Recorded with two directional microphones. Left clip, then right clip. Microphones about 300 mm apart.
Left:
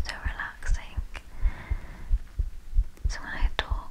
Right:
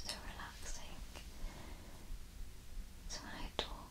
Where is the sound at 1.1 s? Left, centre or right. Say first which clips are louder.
Left 14 dB; centre.